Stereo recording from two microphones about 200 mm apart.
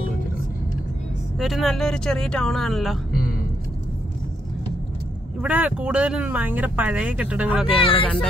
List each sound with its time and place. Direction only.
1.4 s speech: centre (ahead or behind)
5.4 s speech: 5° right (ahead or behind)
7.8 s speech: 25° left (ahead or behind)